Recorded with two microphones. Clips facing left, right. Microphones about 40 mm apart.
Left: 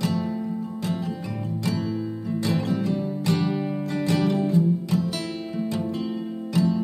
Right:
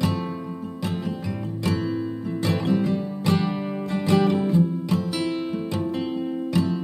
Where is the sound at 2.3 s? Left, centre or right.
Right.